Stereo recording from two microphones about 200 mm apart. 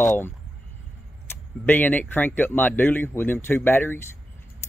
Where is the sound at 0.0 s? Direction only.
10° left (ahead or behind).